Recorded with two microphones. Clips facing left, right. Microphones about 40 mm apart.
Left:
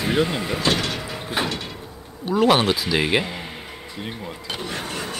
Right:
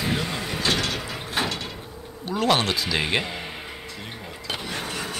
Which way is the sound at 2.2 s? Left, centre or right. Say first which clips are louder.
Left 5 dB; centre.